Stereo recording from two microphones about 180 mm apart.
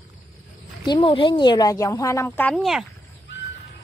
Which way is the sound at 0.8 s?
25° left (ahead or behind).